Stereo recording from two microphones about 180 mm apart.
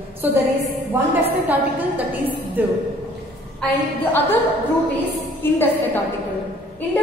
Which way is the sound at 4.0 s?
10° left (ahead or behind).